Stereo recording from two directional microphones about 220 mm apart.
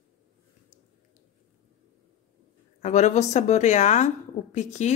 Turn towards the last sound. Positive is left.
turn(degrees=30)  # may be behind; listen again after turning